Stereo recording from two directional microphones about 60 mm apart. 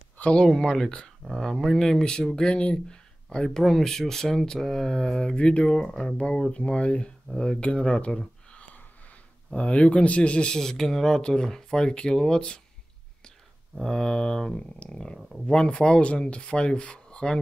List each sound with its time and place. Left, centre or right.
0.2 s speech: centre
9.5 s speech: left
13.8 s speech: centre
15.1 s speech: centre
15.4 s speech: centre